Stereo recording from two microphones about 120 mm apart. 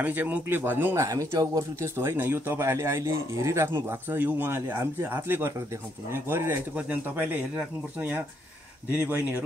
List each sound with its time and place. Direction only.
0.0 s speech: 15° right (ahead or behind)